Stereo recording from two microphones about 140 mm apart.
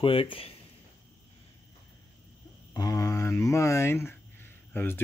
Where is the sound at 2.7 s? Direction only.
25° left (ahead or behind).